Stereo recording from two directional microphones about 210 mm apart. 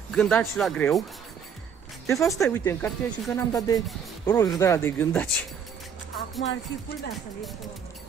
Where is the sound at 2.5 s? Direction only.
10° left (ahead or behind).